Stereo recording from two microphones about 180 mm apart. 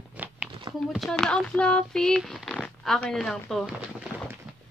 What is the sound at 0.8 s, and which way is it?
Speech, centre (ahead or behind).